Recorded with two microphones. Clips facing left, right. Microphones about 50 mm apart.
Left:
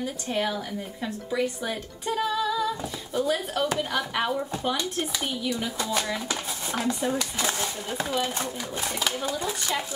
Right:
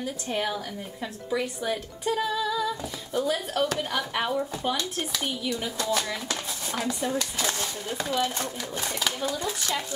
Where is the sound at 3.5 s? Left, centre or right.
Centre.